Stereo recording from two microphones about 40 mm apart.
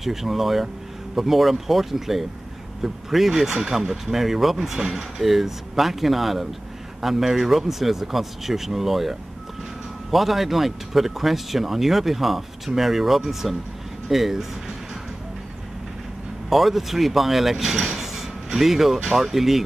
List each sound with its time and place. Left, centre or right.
0.0 s speech: centre
10.1 s speech: centre
16.4 s speech: centre